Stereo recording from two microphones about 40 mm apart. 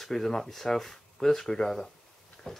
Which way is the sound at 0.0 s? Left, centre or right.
Centre.